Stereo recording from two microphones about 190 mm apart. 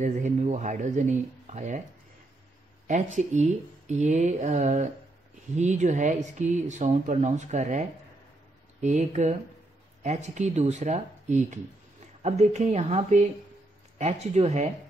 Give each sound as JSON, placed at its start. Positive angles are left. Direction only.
{"t": 0.0, "sound": "speech", "side_deg": -40}
{"t": 2.9, "sound": "speech", "side_deg": -40}
{"t": 8.8, "sound": "speech", "side_deg": -40}